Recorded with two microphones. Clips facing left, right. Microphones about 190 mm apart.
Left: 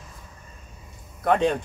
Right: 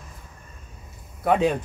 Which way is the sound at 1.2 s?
5° right (ahead or behind).